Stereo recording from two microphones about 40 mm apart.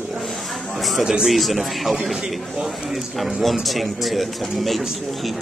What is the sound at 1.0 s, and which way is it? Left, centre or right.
Speech, centre.